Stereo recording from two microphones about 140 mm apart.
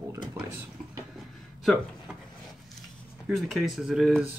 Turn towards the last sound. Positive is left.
turn(degrees=0)  # may be behind; listen again after turning